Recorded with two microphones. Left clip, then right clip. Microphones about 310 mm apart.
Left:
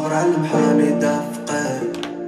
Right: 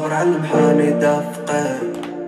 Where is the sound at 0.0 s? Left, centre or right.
Right.